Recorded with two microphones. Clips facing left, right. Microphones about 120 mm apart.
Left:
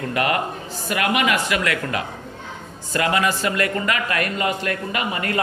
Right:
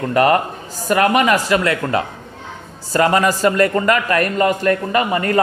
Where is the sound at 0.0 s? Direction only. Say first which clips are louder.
Right 7 dB; 40° right (ahead or behind).